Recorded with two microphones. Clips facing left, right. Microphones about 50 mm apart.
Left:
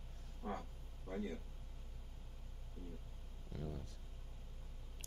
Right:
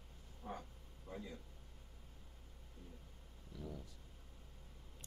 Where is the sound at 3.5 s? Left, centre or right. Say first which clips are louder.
Left 2 dB; left.